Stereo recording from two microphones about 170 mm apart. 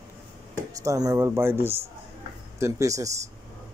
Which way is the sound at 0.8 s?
20° right (ahead or behind).